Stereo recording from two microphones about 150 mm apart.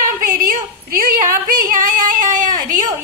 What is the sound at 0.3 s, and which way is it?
Yodeling, 65° right (ahead or behind).